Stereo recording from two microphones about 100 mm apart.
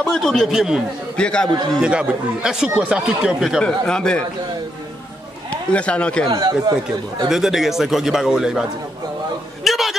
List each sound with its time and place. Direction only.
0.0 s a man's voice: 5° left (ahead or behind)
1.1 s a man's voice: 10° left (ahead or behind)
1.8 s speech: 10° right (ahead or behind)
3.6 s speech: 5° left (ahead or behind)
5.5 s a man's voice: 10° left (ahead or behind)
6.2 s speech: 40° right (ahead or behind)
7.2 s a man's voice: 5° right (ahead or behind)
9.7 s a sound: centre (ahead or behind)